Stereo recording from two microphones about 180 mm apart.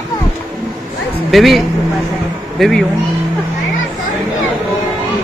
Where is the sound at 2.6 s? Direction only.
Centre (ahead or behind).